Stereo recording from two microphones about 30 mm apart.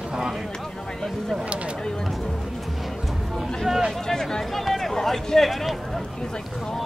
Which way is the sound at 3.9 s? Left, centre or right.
Centre.